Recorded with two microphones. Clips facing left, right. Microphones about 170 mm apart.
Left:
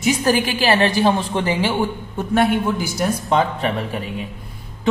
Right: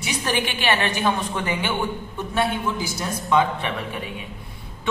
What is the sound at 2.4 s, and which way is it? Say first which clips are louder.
A man's voice: left 6 dB; 55° left (ahead or behind).